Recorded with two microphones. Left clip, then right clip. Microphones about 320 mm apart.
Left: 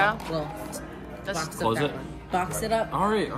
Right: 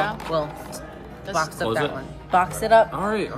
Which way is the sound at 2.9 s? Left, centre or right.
Centre.